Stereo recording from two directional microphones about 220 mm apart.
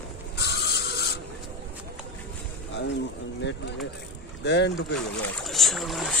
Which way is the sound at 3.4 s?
55° left (ahead or behind).